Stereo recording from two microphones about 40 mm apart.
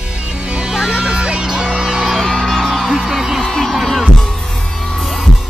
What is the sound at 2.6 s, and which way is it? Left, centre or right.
Music, centre.